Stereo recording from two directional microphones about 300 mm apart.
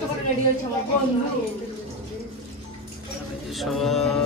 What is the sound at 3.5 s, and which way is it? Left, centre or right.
Mantra, centre.